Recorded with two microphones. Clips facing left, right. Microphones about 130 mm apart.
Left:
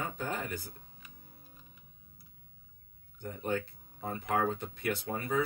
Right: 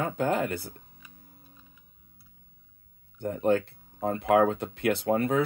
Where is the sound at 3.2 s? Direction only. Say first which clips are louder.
Right 10 dB; 90° right.